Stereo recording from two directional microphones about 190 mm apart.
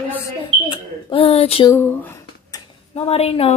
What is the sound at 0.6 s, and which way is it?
A woman's voice, 30° left (ahead or behind).